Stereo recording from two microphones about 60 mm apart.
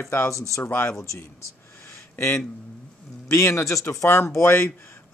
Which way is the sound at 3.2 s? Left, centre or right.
Left.